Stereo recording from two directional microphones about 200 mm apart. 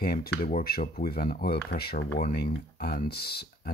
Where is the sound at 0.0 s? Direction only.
50° left (ahead or behind).